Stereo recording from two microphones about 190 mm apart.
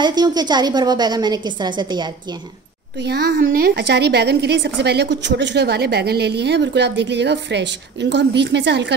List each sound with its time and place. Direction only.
0.0 s a woman's voice: 20° right (ahead or behind)
3.0 s a woman's voice: 60° right (ahead or behind)